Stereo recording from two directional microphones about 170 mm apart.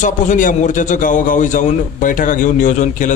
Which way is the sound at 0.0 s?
50° left (ahead or behind).